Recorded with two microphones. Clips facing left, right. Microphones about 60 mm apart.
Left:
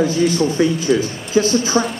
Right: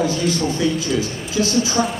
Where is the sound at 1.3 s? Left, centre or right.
Left.